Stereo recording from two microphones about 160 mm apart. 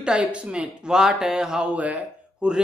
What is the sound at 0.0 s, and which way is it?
Speech, 5° right (ahead or behind).